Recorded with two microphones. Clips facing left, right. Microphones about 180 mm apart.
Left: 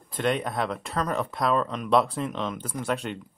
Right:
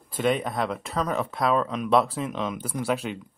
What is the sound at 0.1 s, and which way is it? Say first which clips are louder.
Speech: right 2 dB; centre (ahead or behind).